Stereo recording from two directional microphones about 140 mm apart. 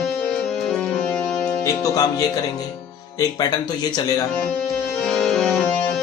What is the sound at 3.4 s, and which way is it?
Speech, 30° left (ahead or behind).